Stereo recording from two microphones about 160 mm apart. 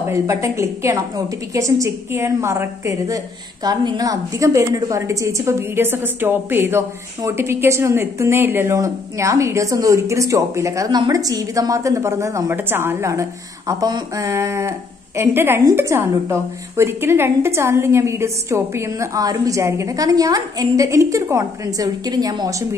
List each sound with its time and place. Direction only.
0.1 s a woman's voice: 20° right (ahead or behind)